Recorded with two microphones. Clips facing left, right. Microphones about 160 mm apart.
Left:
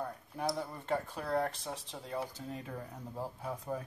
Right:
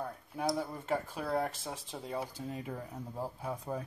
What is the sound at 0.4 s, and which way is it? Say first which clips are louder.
Speech: right 2 dB; 10° right (ahead or behind).